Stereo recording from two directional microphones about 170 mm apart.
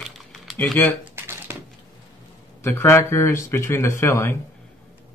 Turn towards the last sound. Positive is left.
turn(degrees=15)  # may be behind; listen again after turning